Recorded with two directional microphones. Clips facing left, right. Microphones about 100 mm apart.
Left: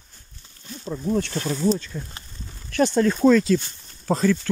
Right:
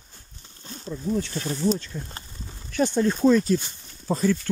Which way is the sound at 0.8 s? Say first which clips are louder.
Left 3 dB; 60° left (ahead or behind).